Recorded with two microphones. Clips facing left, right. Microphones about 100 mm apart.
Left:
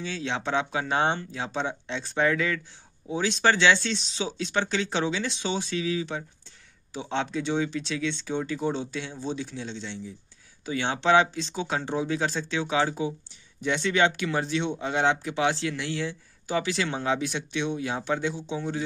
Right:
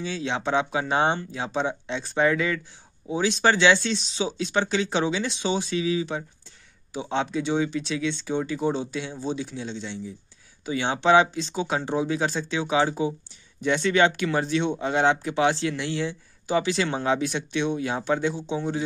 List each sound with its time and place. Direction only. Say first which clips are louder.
0.0 s speech: right 3 dB; 15° right (ahead or behind)
13.6 s speech: right 3 dB; 45° right (ahead or behind)
18.5 s a man's voice: right 3 dB; 25° right (ahead or behind)